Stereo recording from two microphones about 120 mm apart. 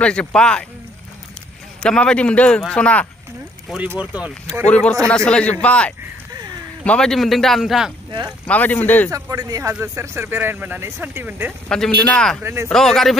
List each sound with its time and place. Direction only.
0.0 s a man's voice: 10° left (ahead or behind)
1.8 s a man's voice: 5° left (ahead or behind)
3.7 s speech: 15° right (ahead or behind)
4.6 s a man's voice: 10° left (ahead or behind)
8.5 s a man's voice: 15° left (ahead or behind)
9.1 s speech: 30° right (ahead or behind)
11.7 s a man's voice: 10° left (ahead or behind)
12.4 s speech: 20° right (ahead or behind)
12.6 s a man's voice: 5° left (ahead or behind)